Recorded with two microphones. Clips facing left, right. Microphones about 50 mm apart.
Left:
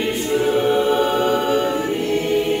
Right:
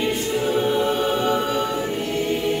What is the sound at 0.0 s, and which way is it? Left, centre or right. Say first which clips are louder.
Choir: left 3 dB; left.